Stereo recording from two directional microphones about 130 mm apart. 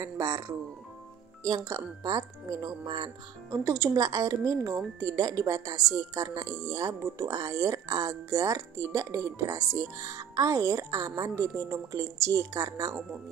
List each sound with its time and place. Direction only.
0.0 s speech: 25° right (ahead or behind)
3.6 s speech: 20° right (ahead or behind)